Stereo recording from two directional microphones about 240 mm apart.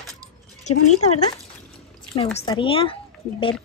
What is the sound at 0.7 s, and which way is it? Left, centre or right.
Speech, left.